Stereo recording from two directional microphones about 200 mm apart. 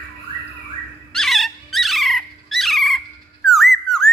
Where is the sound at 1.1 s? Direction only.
Centre (ahead or behind).